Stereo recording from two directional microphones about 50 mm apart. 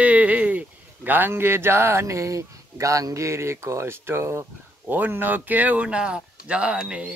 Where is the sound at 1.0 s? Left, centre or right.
Right.